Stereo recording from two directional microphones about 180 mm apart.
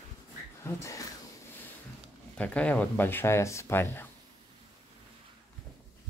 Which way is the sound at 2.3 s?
5° left (ahead or behind).